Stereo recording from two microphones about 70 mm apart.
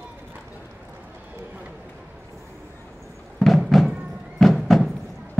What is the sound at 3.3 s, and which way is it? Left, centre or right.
Music, centre.